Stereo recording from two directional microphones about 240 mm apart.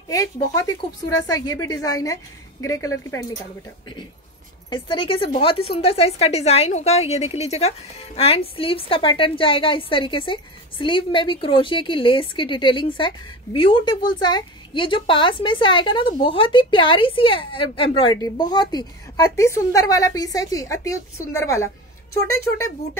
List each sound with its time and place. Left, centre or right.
0.1 s a woman's voice: centre
4.6 s a woman's voice: left